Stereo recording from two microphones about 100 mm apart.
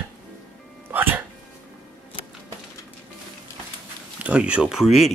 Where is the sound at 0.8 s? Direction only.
20° right (ahead or behind).